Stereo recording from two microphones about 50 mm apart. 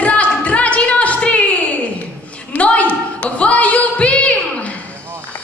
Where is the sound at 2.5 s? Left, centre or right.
Left.